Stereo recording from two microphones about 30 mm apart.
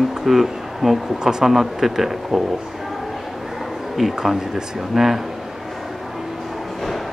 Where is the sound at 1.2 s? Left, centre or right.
Right.